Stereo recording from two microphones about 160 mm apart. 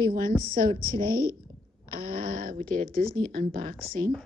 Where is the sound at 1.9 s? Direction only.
65° right (ahead or behind).